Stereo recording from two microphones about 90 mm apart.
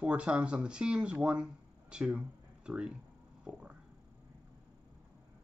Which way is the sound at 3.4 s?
10° right (ahead or behind).